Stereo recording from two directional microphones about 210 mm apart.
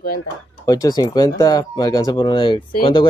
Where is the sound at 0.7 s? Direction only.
20° left (ahead or behind).